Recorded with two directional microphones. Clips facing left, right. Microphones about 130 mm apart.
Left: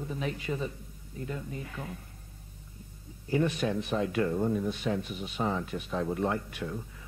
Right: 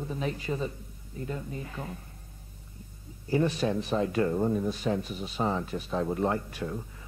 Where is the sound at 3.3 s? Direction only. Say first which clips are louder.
Right 2 dB; 35° right (ahead or behind).